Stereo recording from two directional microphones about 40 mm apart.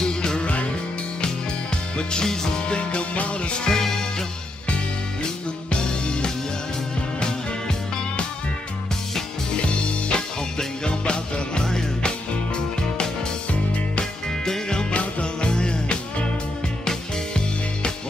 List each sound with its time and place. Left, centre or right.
0.0 s music: centre
2.0 s music: centre
2.8 s music: left
3.6 s music: centre
5.8 s music: left
9.5 s music: left
14.4 s music: centre